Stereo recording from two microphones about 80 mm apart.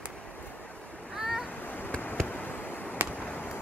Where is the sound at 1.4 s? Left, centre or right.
Left.